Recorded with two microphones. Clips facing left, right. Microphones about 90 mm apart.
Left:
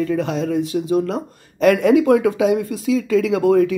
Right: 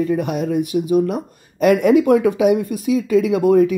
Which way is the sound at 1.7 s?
25° right (ahead or behind).